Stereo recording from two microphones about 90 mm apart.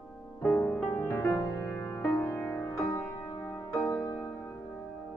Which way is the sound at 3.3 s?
55° left (ahead or behind).